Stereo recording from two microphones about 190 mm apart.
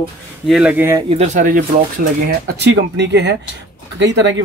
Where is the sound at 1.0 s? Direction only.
35° right (ahead or behind).